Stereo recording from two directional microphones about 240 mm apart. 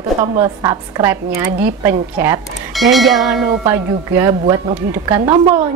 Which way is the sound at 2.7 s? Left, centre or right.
Centre.